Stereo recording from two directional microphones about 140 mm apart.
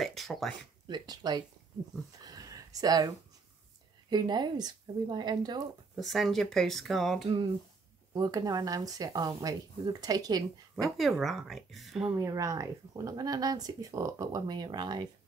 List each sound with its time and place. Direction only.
0.0 s a sound: centre (ahead or behind)
0.8 s speech: 30° right (ahead or behind)
2.1 s a sound: 25° right (ahead or behind)
4.1 s a woman's voice: 30° right (ahead or behind)
5.9 s speech: centre (ahead or behind)
8.1 s speech: 25° right (ahead or behind)
11.0 s speech: centre (ahead or behind)
12.2 s speech: 20° right (ahead or behind)